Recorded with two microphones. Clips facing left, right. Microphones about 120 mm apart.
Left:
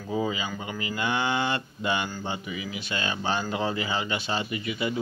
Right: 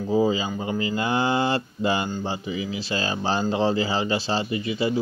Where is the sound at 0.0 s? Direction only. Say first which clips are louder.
Right 7 dB; 30° right (ahead or behind).